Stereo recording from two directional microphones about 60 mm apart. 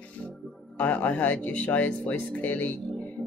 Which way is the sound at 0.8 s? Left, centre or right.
Left.